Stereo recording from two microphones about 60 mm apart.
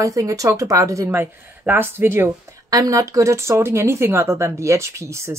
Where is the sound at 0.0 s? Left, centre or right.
Right.